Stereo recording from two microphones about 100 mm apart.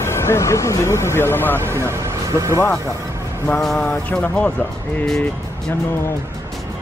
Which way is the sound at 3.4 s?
5° left (ahead or behind).